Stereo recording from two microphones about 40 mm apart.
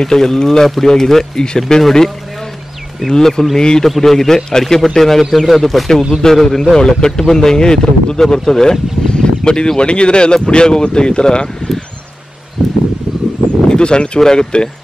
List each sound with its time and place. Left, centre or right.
0.0 s a man's voice: centre
3.8 s a man's voice: centre; by 11.7 s left
13.7 s a man's voice: left